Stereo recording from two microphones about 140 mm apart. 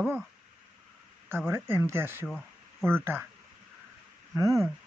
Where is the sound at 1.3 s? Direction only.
15° right (ahead or behind).